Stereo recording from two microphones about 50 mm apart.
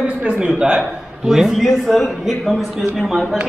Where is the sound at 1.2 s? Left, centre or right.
Centre.